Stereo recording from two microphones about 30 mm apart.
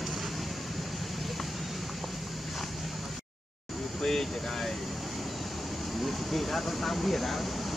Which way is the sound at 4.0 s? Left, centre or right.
Centre.